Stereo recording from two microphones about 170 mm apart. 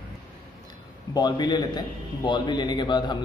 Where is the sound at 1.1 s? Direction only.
25° left (ahead or behind).